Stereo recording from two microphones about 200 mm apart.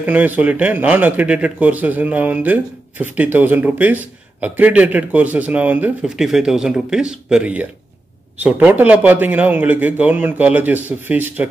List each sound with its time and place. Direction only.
0.0 s a man's voice: 10° right (ahead or behind)